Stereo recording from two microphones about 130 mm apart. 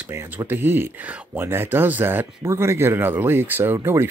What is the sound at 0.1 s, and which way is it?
Speech, 20° right (ahead or behind).